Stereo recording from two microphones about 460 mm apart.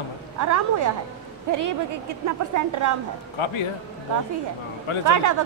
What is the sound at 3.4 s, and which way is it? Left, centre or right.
Speech, left.